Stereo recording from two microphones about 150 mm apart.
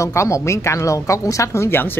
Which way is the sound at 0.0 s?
20° left (ahead or behind).